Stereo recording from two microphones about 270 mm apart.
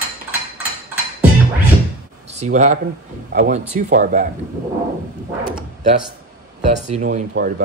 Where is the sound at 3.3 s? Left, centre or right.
Right.